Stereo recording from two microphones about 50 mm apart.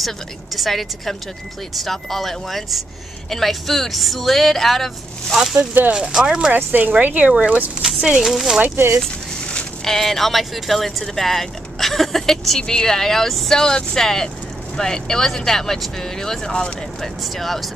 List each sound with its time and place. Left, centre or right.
0.6 s speech: centre
5.9 s speech: centre
6.5 s speech: right
8.2 s speech: centre
8.6 s speech: right
9.8 s speech: centre
17.0 s speech: centre